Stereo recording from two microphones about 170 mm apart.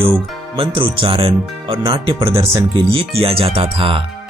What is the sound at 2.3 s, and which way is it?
Speech, 15° right (ahead or behind).